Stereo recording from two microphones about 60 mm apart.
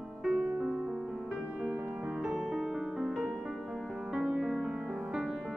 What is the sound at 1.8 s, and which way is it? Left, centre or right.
Music, right.